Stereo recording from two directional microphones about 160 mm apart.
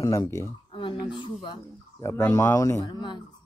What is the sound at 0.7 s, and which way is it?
Speech, 30° left (ahead or behind).